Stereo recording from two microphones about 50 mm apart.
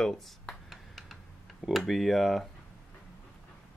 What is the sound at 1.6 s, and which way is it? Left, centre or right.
Speech, centre.